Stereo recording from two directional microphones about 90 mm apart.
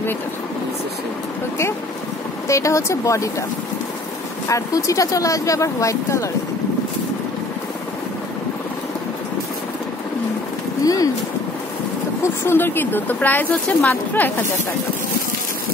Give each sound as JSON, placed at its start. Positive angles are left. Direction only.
{"t": 2.4, "sound": "speech", "side_deg": 35}
{"t": 4.5, "sound": "speech", "side_deg": 35}
{"t": 10.8, "sound": "a sound", "side_deg": 40}
{"t": 12.2, "sound": "speech", "side_deg": 25}